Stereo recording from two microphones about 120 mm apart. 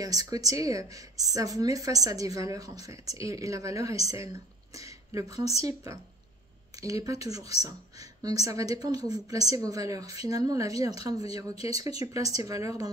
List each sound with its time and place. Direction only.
0.0 s a woman's voice: 30° right (ahead or behind)
6.8 s a woman's voice: 30° right (ahead or behind)